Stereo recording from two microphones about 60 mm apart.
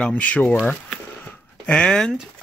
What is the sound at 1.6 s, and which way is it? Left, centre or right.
Speech, centre.